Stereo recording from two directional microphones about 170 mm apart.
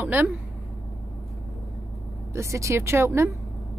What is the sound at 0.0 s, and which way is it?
Speech, 10° right (ahead or behind).